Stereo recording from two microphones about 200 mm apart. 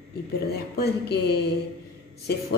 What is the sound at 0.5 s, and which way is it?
A woman's voice, 55° left (ahead or behind).